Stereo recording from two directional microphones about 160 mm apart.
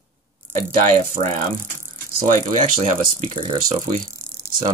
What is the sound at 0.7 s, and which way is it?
Speech, 55° right (ahead or behind).